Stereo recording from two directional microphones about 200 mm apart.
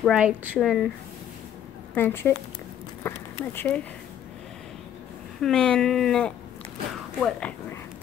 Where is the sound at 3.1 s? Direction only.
10° left (ahead or behind).